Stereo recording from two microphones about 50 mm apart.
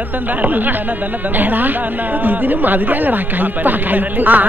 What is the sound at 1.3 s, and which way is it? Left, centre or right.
Speech, right.